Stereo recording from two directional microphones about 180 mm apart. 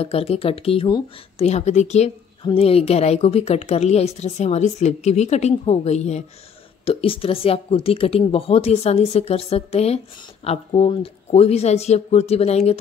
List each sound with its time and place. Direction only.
0.0 s speech: 35° left (ahead or behind)
1.4 s speech: 35° left (ahead or behind)